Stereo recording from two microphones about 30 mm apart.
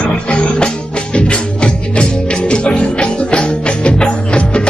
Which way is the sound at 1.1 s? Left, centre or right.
Left.